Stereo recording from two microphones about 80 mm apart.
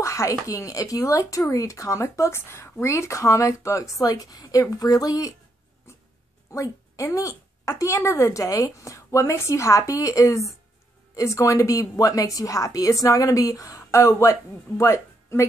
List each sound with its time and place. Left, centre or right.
0.0 s speech: left
5.9 s a sound: left
6.5 s a woman's voice: left